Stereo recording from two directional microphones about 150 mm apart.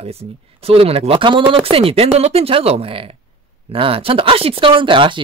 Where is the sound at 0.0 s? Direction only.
40° right (ahead or behind).